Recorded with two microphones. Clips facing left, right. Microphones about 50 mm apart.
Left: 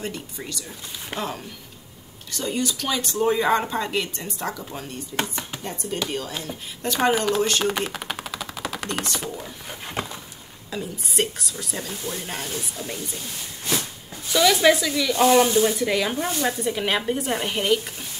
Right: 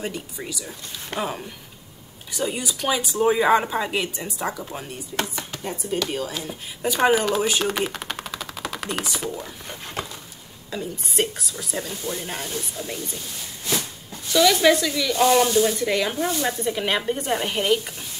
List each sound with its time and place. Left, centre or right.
0.0 s speech: centre
10.0 s vehicle: centre
10.7 s speech: centre
14.3 s speech: centre